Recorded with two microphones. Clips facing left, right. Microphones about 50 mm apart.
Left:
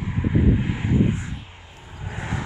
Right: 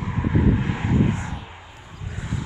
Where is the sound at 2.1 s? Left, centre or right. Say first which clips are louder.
Left 2 dB; left.